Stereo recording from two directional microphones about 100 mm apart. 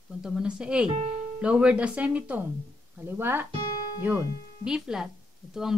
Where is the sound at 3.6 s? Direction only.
45° left (ahead or behind).